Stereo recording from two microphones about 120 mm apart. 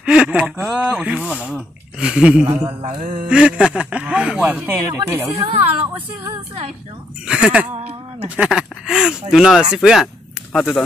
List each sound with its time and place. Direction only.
0.0 s speech: 5° right (ahead or behind)
2.4 s speech: 45° right (ahead or behind)
3.3 s speech: 10° right (ahead or behind)
4.8 s speech: 25° right (ahead or behind)
7.2 s speech: 5° right (ahead or behind)
7.7 s a sound: 60° right (ahead or behind)
8.4 s speech: 5° right (ahead or behind)